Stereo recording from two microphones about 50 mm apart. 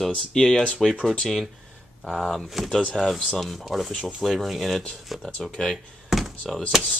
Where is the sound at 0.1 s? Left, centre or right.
Centre.